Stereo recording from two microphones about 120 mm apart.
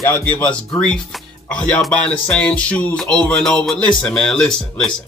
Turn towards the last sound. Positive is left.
turn(degrees=5)  # may be behind; listen again after turning